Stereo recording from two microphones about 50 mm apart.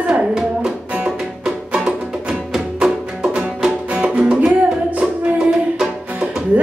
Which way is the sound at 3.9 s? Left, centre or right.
Right.